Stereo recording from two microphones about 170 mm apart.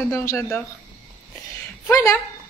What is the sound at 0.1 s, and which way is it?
Speech, 15° left (ahead or behind).